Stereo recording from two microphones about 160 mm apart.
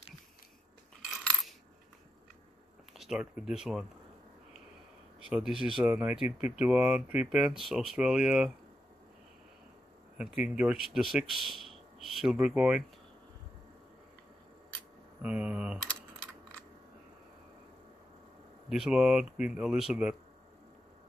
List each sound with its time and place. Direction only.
2.9 s speech: 5° right (ahead or behind)
5.3 s speech: 5° right (ahead or behind)
10.1 s speech: 5° right (ahead or behind)
15.2 s speech: 10° right (ahead or behind)
18.7 s speech: 5° right (ahead or behind)